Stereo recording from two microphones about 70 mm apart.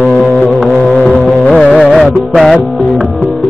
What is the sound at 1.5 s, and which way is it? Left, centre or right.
Music, centre.